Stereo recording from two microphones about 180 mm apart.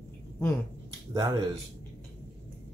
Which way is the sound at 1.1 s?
25° right (ahead or behind).